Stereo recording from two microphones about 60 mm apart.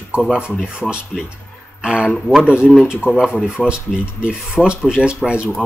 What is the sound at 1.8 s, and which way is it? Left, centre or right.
Speech, centre.